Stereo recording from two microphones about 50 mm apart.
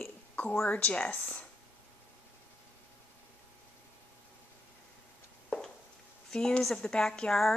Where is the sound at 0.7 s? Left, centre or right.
Left.